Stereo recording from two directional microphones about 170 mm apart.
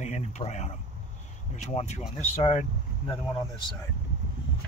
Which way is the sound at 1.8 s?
40° left (ahead or behind).